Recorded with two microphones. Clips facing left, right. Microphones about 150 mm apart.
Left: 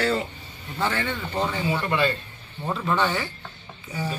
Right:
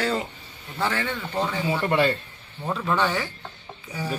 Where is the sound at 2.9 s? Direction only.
10° right (ahead or behind).